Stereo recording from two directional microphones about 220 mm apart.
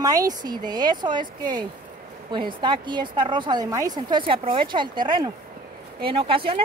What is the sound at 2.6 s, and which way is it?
A woman's voice, 20° right (ahead or behind).